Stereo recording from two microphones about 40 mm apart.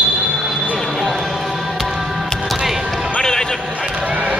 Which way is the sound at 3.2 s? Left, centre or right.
Centre.